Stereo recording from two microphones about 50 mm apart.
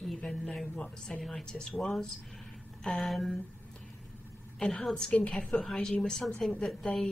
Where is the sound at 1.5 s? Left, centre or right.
Centre.